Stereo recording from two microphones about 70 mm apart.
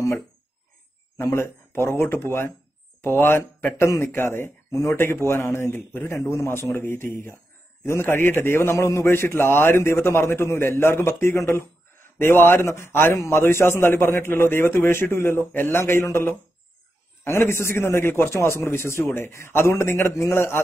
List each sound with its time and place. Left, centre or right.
1.1 s a man's voice: left